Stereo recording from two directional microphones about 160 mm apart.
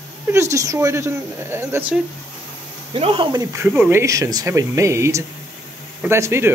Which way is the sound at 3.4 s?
20° right (ahead or behind).